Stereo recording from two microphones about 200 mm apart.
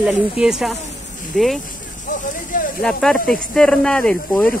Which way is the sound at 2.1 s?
40° left (ahead or behind).